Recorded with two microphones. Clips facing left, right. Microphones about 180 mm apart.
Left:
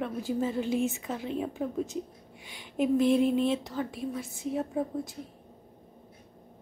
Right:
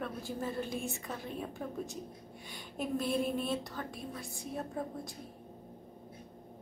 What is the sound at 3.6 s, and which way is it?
A woman's voice, 5° left (ahead or behind).